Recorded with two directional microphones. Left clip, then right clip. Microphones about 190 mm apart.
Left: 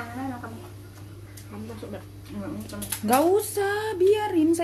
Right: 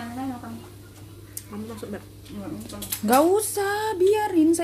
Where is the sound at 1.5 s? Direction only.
55° right (ahead or behind).